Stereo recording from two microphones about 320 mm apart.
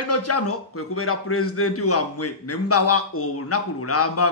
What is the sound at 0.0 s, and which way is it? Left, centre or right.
A man's voice, left.